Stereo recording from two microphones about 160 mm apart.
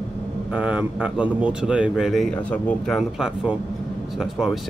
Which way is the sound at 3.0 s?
5° right (ahead or behind).